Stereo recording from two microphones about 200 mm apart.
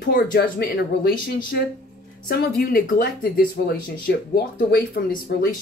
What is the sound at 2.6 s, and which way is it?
Speech, 45° left (ahead or behind).